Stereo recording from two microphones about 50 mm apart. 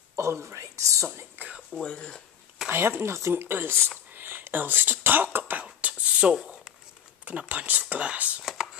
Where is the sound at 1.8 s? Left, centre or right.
Centre.